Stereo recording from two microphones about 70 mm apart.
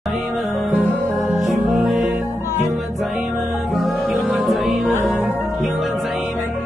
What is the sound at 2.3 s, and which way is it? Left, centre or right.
Music, left.